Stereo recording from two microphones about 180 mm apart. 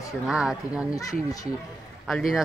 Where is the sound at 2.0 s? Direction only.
Centre (ahead or behind).